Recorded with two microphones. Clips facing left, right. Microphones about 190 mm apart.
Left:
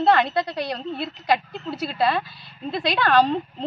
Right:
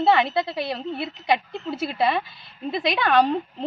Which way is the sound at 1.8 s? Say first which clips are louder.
Left 1 dB; 20° right (ahead or behind).